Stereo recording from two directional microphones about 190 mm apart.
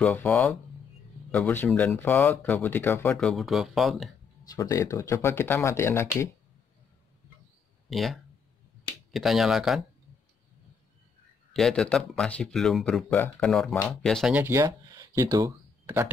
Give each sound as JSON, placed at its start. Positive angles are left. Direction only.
{"t": 0.0, "sound": "speech", "side_deg": 5}
{"t": 4.5, "sound": "speech", "side_deg": 15}
{"t": 7.9, "sound": "speech", "side_deg": 0}
{"t": 11.5, "sound": "speech", "side_deg": 5}
{"t": 14.3, "sound": "speech", "side_deg": -10}